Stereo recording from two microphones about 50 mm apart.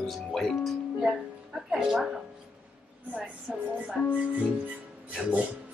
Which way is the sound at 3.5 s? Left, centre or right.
Centre.